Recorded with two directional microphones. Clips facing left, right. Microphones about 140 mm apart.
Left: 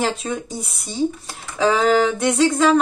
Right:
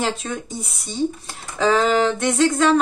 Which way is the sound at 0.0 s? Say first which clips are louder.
Left 2 dB; centre (ahead or behind).